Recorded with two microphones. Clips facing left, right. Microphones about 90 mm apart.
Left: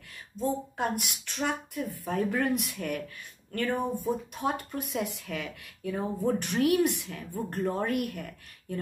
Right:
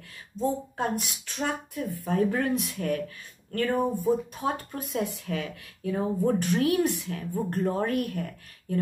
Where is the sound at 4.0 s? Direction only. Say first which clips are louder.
Right 4 dB; 40° right (ahead or behind).